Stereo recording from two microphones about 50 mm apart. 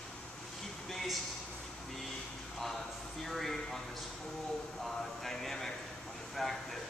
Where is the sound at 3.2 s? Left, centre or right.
Centre.